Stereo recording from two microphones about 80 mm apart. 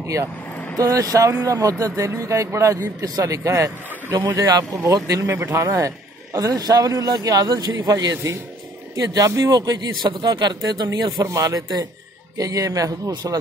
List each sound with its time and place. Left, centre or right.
0.7 s a man's voice: right
4.4 s a man's voice: right
5.3 s a man's voice: right
9.5 s a man's voice: right
11.2 s a man's voice: right
13.1 s a man's voice: right